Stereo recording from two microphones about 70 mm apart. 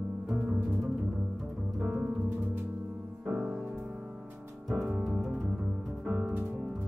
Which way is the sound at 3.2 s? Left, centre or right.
Centre.